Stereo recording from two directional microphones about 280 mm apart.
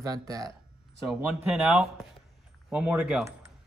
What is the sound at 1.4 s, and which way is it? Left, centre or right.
Speech, centre.